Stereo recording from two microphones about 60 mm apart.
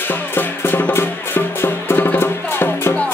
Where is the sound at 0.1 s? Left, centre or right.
Left.